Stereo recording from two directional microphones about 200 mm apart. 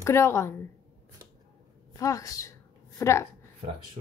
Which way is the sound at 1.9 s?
15° left (ahead or behind).